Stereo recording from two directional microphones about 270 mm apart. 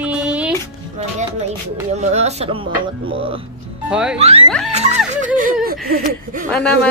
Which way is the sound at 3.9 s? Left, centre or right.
Centre.